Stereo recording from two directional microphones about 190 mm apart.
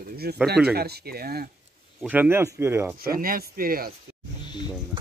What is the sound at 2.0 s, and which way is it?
Speech, 10° right (ahead or behind).